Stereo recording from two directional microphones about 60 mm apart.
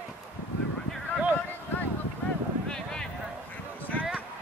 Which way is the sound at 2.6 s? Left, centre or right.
Centre.